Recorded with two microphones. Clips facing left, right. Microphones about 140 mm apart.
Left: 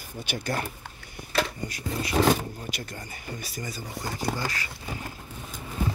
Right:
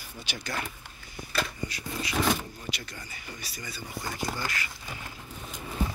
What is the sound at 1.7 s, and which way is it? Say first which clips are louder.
Speech: left 5 dB; 45° left (ahead or behind).